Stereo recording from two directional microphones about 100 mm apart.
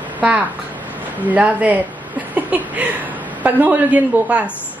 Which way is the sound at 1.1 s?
15° right (ahead or behind).